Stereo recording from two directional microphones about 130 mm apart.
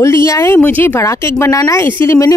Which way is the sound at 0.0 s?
20° left (ahead or behind).